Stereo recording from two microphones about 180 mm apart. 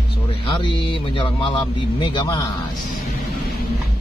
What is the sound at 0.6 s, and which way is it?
Speech, 25° left (ahead or behind).